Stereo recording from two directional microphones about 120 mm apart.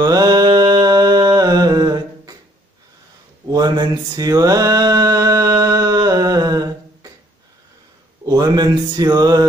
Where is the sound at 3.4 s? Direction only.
35° right (ahead or behind).